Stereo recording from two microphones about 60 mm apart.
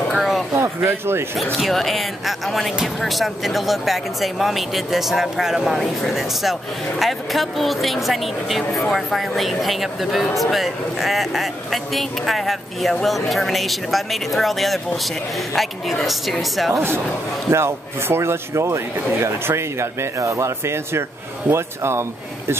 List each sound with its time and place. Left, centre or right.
0.1 s a sound: centre
0.8 s speech: right
1.4 s speech: centre
17.5 s speech: right